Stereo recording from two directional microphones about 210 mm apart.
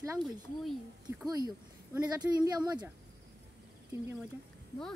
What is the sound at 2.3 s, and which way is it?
Speech, 20° right (ahead or behind).